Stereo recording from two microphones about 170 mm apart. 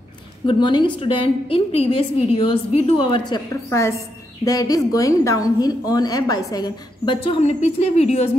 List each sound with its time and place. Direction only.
0.5 s a woman's voice: 30° left (ahead or behind)